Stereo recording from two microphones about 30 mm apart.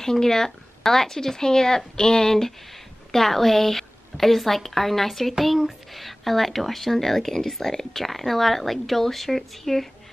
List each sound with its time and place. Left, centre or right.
0.0 s speech: centre